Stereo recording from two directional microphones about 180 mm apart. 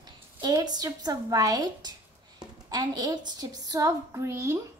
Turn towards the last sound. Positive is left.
turn(degrees=-15)  # may be behind; listen again after turning